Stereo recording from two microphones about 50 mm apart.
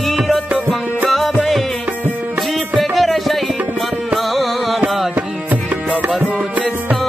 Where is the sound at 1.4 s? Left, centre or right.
Centre.